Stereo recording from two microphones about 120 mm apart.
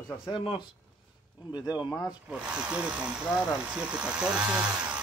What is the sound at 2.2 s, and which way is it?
Speech, 10° right (ahead or behind).